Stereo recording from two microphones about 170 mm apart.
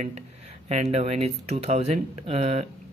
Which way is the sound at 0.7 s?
40° right (ahead or behind).